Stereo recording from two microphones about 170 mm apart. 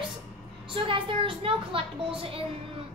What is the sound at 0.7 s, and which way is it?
A woman's voice, 30° right (ahead or behind).